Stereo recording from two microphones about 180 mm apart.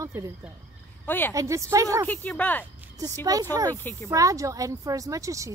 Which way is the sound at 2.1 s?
10° left (ahead or behind).